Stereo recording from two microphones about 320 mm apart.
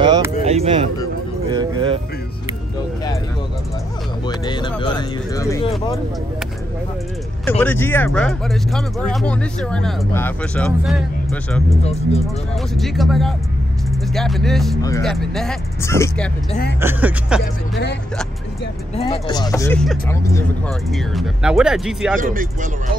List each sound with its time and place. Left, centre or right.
0.0 s music: centre
1.5 s a sound: centre
4.3 s music: centre
7.4 s speech: centre
11.8 s speech: centre
12.7 s speech: centre
16.8 s speech: centre
18.9 s speech: centre
22.1 s speech: right